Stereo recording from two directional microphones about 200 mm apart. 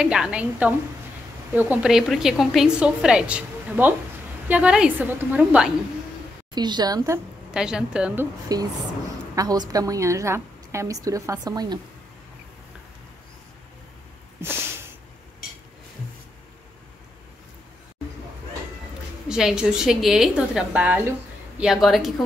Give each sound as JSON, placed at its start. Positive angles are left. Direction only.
{"t": 0.0, "sound": "a woman's voice", "side_deg": -5}
{"t": 6.5, "sound": "a woman's voice", "side_deg": -20}
{"t": 7.5, "sound": "a woman's voice", "side_deg": -5}
{"t": 8.5, "sound": "a woman's voice", "side_deg": -20}
{"t": 19.2, "sound": "a woman's voice", "side_deg": -5}